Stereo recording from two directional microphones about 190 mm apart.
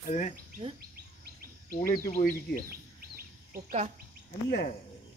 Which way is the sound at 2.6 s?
55° right (ahead or behind).